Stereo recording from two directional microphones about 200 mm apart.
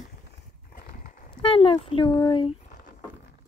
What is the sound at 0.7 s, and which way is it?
Horse, 45° left (ahead or behind).